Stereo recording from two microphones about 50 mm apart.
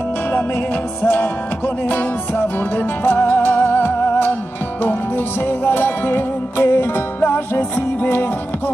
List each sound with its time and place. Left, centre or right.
1.0 s music: left